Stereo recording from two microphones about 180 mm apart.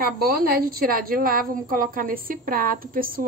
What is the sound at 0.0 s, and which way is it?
A woman's voice, 55° right (ahead or behind).